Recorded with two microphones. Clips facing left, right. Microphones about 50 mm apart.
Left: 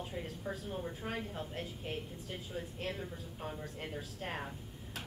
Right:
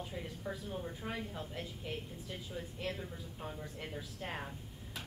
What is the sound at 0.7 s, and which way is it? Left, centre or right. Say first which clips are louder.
Speech: left 1 dB; centre.